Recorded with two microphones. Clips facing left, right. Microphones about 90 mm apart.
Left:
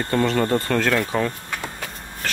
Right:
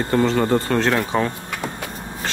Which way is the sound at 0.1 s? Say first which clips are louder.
Right 2 dB; 25° right (ahead or behind).